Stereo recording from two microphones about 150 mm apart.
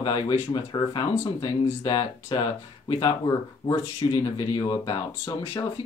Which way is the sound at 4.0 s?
25° left (ahead or behind).